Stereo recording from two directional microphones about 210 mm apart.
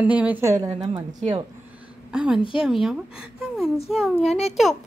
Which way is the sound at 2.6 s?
Centre (ahead or behind).